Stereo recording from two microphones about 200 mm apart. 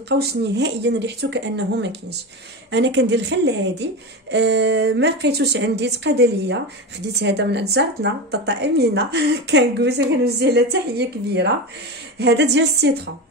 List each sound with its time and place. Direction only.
0.1 s a woman's voice: 55° right (ahead or behind)